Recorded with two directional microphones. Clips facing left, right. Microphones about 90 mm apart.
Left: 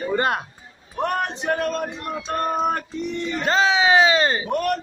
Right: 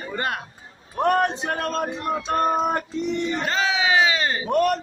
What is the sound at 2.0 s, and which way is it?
Music, 20° right (ahead or behind).